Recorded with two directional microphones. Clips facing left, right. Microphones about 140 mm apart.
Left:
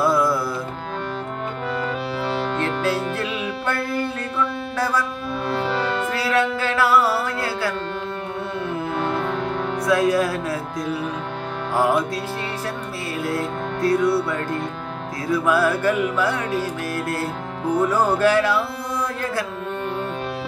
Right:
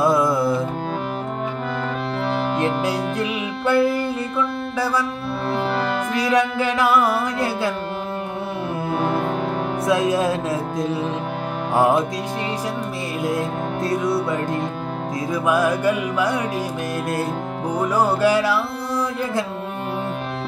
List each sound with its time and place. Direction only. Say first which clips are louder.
0.0 s music: right 2 dB; 20° right (ahead or behind)
2.5 s music: right 1 dB; 15° right (ahead or behind)
5.6 s music: right 1 dB; centre (ahead or behind)
6.1 s music: right 4 dB; 15° right (ahead or behind)
9.0 s music: right 3 dB; 10° right (ahead or behind)
11.7 s music: right 2 dB; 25° right (ahead or behind)
13.3 s music: right 1 dB; 20° right (ahead or behind)
17.6 s music: left 1 dB; 10° right (ahead or behind)